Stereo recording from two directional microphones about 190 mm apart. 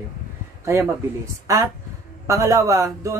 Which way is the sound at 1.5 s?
15° right (ahead or behind).